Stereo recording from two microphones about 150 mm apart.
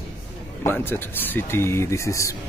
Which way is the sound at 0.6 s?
15° left (ahead or behind).